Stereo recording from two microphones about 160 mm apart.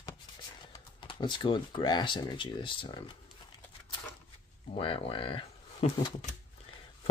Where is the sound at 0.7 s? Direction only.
30° left (ahead or behind).